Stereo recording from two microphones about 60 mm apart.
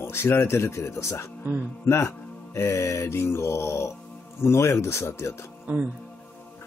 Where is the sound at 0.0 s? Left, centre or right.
Left.